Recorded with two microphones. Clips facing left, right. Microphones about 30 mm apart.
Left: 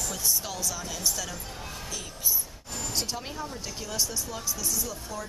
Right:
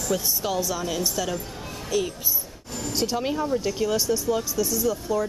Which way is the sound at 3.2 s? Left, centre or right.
Right.